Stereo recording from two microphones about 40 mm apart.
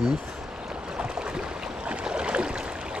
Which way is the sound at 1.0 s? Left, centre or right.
Centre.